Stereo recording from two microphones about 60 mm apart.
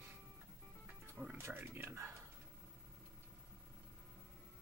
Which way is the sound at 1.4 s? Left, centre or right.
Right.